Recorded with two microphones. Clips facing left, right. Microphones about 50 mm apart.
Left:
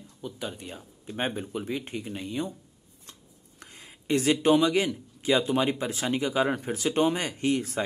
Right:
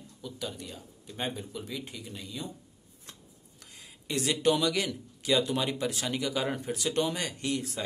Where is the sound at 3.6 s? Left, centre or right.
Left.